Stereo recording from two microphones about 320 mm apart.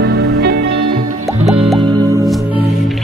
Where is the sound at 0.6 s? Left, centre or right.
Right.